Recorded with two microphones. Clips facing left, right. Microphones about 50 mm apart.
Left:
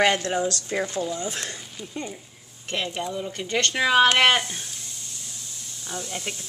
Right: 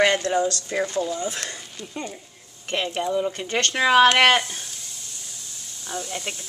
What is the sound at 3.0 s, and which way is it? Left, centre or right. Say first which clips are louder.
Speech: right 6 dB; centre.